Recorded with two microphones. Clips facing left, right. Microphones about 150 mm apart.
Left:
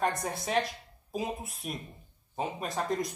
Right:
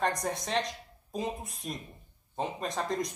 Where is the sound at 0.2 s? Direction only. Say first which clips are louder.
Left 1 dB; 5° left (ahead or behind).